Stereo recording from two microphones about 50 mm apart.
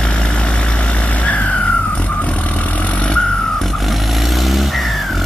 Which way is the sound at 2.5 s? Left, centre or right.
Left.